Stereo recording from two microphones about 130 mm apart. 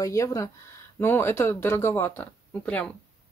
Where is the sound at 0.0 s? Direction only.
25° left (ahead or behind).